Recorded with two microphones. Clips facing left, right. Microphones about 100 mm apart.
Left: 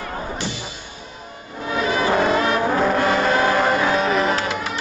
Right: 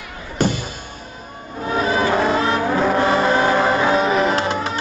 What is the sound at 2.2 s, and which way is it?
Music, 30° right (ahead or behind).